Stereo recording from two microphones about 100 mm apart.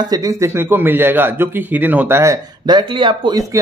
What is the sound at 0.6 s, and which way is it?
Speech, 20° right (ahead or behind).